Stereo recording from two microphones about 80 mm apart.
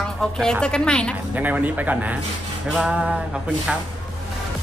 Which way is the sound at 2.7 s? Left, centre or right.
Centre.